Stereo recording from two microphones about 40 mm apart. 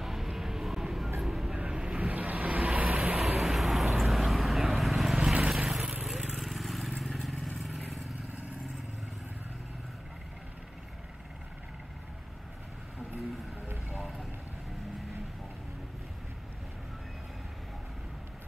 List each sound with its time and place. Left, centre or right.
0.0 s vehicle: centre
1.5 s vehicle: right
2.0 s vehicle: right
3.2 s vehicle: centre
6.3 s vehicle: centre